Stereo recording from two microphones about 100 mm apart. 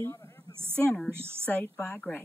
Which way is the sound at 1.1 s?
25° right (ahead or behind).